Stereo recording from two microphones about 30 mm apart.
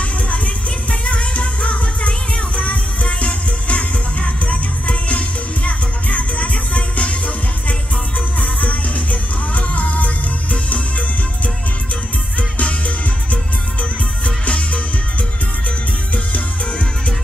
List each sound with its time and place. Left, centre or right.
1.0 s music: left
8.4 s music: left